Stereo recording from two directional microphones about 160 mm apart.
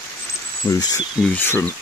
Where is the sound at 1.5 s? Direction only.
15° left (ahead or behind).